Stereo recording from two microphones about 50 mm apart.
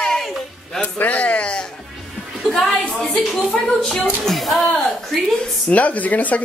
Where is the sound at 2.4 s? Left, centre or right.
Centre.